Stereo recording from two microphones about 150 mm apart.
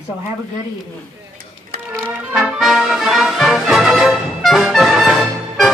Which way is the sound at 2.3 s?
Centre (ahead or behind).